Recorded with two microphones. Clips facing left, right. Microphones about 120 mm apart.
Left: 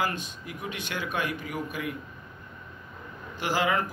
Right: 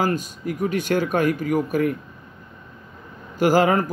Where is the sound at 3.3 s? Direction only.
45° right (ahead or behind).